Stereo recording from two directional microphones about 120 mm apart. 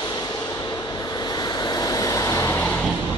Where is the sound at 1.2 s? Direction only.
35° left (ahead or behind).